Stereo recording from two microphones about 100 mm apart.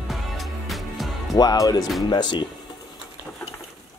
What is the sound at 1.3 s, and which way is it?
Speech, 40° left (ahead or behind).